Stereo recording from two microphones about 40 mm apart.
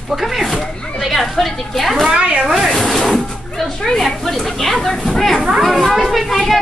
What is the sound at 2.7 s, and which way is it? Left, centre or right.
Speech, centre.